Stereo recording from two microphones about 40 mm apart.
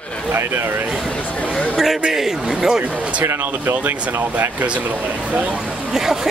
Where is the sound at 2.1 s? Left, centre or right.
Centre.